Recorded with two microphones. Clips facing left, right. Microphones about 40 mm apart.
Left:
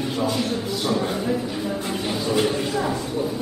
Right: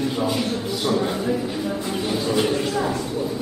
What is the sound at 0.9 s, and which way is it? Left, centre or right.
Speech, centre.